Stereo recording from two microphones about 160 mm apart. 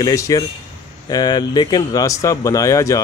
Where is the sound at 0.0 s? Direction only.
20° left (ahead or behind).